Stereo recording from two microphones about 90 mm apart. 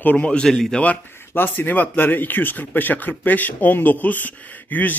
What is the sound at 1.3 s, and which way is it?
Speech, 25° left (ahead or behind).